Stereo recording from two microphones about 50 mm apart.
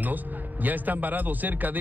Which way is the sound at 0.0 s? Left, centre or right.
Right.